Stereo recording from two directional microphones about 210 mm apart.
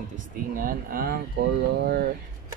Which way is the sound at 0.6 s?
45° right (ahead or behind).